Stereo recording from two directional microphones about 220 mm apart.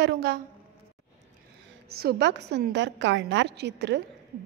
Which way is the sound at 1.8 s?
45° right (ahead or behind).